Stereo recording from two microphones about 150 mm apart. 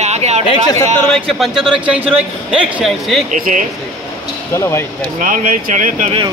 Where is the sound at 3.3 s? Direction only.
65° right (ahead or behind).